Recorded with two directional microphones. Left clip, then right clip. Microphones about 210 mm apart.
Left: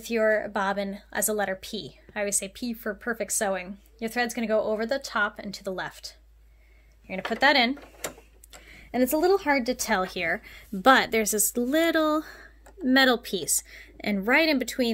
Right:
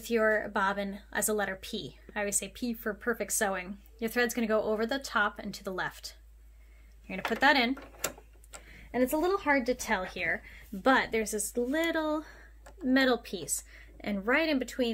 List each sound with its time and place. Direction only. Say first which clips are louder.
0.0 s a woman's voice: left 4 dB; 20° left (ahead or behind)
7.1 s a woman's voice: left 3 dB; 25° left (ahead or behind)
8.0 s tick-tock: left 1 dB; 10° right (ahead or behind)
8.7 s a woman's voice: left 4 dB; 50° left (ahead or behind)